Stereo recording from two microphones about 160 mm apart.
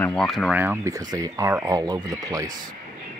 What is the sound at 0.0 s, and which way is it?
Speech, 5° left (ahead or behind).